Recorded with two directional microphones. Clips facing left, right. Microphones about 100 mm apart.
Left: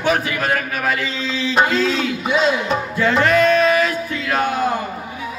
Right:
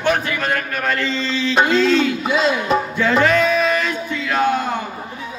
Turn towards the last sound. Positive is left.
turn(degrees=5)  # may be behind; listen again after turning